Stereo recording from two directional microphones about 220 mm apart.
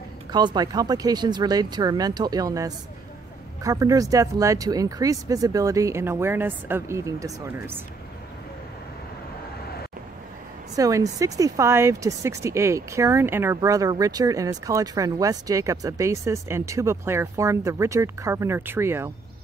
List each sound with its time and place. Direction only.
0.3 s speech: 20° right (ahead or behind)
10.8 s speech: 15° right (ahead or behind)